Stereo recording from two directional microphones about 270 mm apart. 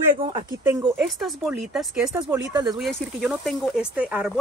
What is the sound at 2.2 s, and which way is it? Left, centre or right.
Speech, centre.